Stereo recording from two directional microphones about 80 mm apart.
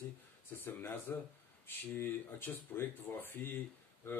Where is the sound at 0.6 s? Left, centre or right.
Left.